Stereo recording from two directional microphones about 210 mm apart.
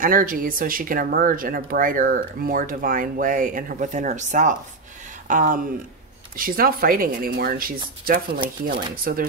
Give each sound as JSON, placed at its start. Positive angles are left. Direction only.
{"t": 0.0, "sound": "speech", "side_deg": -40}